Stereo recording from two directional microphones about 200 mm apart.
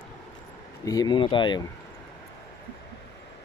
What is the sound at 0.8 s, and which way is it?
Speech, 20° left (ahead or behind).